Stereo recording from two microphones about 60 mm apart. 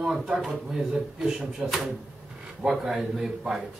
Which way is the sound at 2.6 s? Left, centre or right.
Centre.